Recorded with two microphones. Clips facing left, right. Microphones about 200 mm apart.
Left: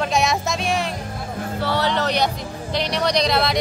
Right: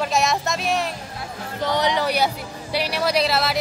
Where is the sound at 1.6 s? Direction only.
15° right (ahead or behind).